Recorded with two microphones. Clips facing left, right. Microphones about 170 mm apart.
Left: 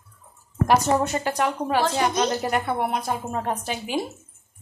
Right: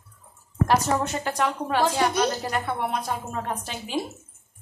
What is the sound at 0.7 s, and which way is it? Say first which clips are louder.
Speech: left 3 dB; 10° left (ahead or behind).